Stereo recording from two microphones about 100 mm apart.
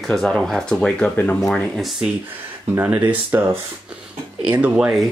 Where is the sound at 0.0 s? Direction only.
Centre (ahead or behind).